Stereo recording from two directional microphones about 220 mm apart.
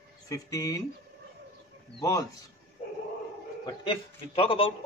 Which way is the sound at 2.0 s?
15° left (ahead or behind).